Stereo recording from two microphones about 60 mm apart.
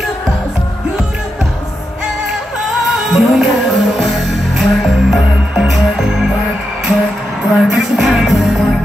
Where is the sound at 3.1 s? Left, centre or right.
Centre.